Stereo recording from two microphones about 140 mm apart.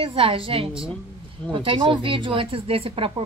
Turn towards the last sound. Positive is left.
turn(degrees=-40)  # may be behind; listen again after turning